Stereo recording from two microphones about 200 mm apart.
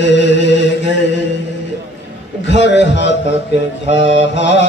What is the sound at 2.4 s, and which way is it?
Mantra, 65° left (ahead or behind).